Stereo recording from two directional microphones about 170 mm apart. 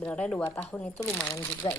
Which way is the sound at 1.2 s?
15° left (ahead or behind).